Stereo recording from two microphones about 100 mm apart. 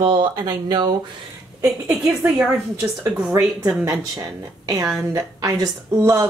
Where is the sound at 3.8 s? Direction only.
30° right (ahead or behind).